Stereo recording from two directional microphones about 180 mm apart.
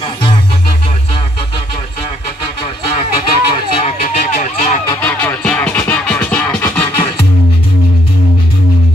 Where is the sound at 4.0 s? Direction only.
45° left (ahead or behind).